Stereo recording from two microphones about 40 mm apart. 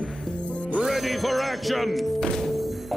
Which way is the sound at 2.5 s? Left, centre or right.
Centre.